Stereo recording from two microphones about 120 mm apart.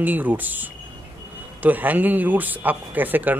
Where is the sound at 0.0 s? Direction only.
15° right (ahead or behind).